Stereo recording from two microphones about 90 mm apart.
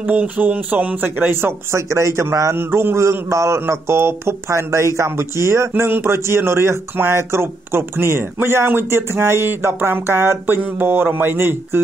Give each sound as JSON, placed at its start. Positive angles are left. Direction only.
{"t": 0.1, "sound": "speech", "side_deg": -15}